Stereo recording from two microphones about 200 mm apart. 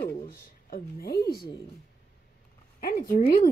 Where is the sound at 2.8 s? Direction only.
45° left (ahead or behind).